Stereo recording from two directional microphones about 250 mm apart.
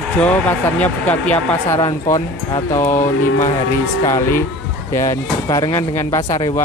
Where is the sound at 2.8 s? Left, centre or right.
Left.